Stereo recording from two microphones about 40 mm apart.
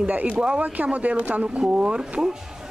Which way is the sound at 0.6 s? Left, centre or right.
Right.